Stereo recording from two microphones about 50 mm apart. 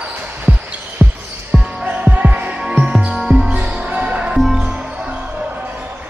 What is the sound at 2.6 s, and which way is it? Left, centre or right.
Music, centre.